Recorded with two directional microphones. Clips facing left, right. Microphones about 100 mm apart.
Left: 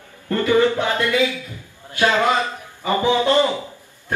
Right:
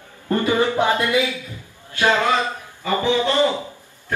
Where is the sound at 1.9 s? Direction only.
15° left (ahead or behind).